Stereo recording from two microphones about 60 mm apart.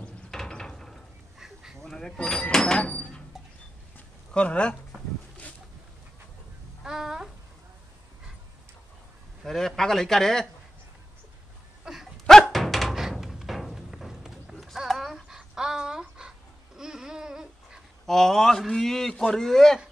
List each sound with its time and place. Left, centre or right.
0.3 s ratchet: centre
1.4 s duck: centre
1.8 s a sound: centre
4.3 s a man's voice: centre
6.8 s a sound: centre
9.4 s a man's voice: centre
11.8 s dog: centre
12.3 s music: centre
14.5 s a sound: centre
18.0 s a man's voice: centre